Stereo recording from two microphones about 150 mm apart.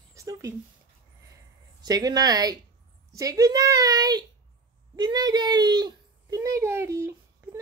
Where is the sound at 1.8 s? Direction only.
25° right (ahead or behind).